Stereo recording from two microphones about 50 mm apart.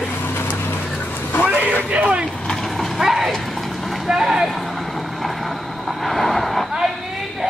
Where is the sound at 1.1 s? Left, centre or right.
Left.